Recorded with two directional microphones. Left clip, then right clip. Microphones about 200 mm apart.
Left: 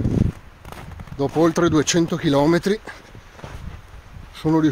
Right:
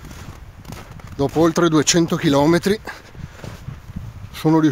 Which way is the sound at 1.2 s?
25° right (ahead or behind).